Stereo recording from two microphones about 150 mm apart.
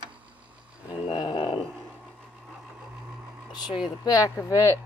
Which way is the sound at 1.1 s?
30° left (ahead or behind).